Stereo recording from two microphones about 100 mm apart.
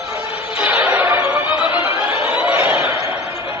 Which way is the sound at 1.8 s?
20° right (ahead or behind).